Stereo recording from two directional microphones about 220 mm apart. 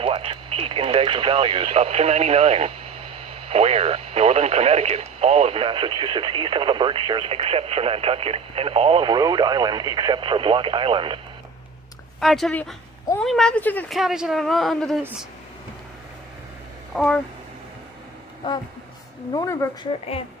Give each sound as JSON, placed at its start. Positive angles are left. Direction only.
{"t": 0.0, "sound": "speech", "side_deg": -25}
{"t": 12.2, "sound": "speech", "side_deg": 0}
{"t": 16.9, "sound": "speech", "side_deg": 0}
{"t": 18.4, "sound": "speech", "side_deg": 20}